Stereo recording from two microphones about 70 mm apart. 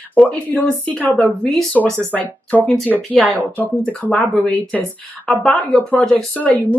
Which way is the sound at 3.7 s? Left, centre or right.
Centre.